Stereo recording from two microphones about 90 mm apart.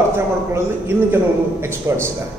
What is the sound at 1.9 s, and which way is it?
Speech, 35° right (ahead or behind).